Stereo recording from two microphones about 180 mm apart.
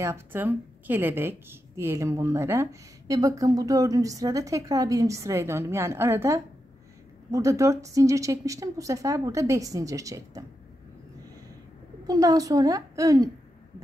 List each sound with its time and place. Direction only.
0.0 s a woman's voice: 15° right (ahead or behind)
12.1 s a woman's voice: 20° right (ahead or behind)